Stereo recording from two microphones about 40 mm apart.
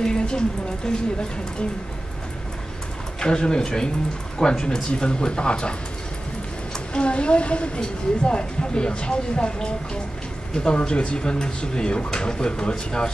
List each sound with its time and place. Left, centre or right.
0.0 s a sound: left
3.2 s speech: centre
6.9 s speech: left